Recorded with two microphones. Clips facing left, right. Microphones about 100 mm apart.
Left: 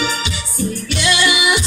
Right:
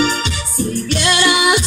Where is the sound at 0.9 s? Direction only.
45° right (ahead or behind).